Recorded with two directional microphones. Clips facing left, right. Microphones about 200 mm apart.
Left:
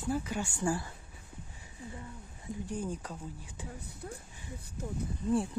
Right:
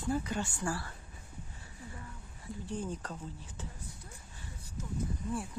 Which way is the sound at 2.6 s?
10° left (ahead or behind).